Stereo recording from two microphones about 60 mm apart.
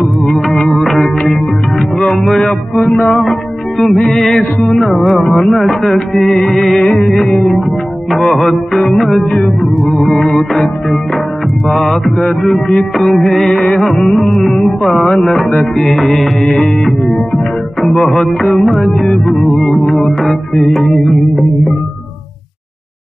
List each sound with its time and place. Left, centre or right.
0.0 s music: centre